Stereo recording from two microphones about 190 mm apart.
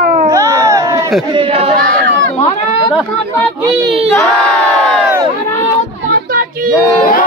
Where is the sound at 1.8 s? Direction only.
50° right (ahead or behind).